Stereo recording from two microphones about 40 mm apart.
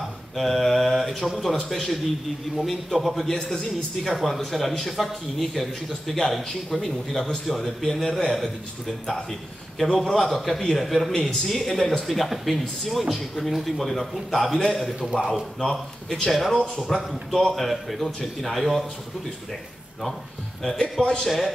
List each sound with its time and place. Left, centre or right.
0.4 s mantra: centre
1.7 s a man's voice: centre
15.6 s speech: centre
16.3 s a man's voice: centre
20.6 s speech: centre